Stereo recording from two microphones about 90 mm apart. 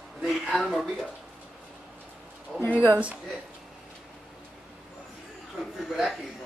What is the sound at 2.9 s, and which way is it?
Speech, 15° right (ahead or behind).